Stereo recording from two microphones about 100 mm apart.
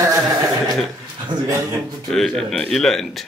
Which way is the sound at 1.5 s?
30° right (ahead or behind).